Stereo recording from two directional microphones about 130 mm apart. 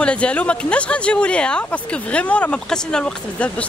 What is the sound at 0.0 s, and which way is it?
Speech, 10° left (ahead or behind).